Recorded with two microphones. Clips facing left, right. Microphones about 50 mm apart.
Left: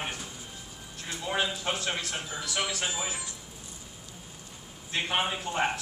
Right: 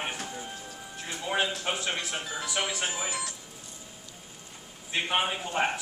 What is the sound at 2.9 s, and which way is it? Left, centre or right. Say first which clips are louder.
Speech: even; right.